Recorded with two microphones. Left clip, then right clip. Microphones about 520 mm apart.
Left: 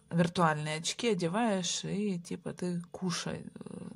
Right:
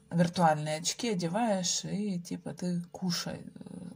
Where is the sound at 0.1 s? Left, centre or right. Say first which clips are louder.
Right 2 dB; left.